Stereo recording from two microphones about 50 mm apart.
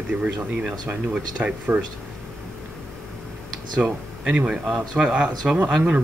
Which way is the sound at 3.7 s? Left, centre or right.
Centre.